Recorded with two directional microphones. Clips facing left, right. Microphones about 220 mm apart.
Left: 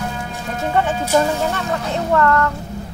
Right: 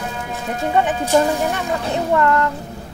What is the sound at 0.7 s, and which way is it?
Music, 15° right (ahead or behind).